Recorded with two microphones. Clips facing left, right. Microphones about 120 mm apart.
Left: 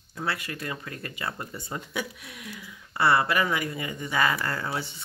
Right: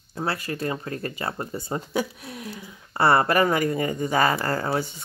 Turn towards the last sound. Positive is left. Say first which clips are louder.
# right 6 dB
turn(degrees=-40)  # may be behind; listen again after turning